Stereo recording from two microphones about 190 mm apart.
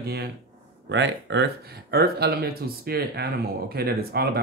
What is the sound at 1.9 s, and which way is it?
A woman's voice, 55° right (ahead or behind).